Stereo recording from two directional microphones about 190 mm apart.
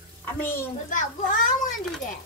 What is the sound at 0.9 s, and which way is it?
Speech, 45° left (ahead or behind).